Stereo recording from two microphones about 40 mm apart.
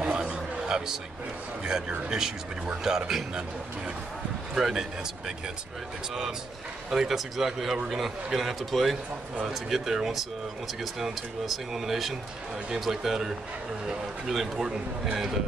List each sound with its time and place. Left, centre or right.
0.1 s a sound: right
1.6 s a man's voice: right
4.6 s a man's voice: centre
6.9 s a man's voice: centre